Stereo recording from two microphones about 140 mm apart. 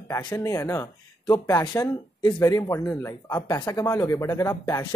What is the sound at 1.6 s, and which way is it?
Speech, 30° left (ahead or behind).